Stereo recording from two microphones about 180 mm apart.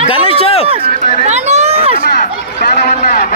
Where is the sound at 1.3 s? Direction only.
40° right (ahead or behind).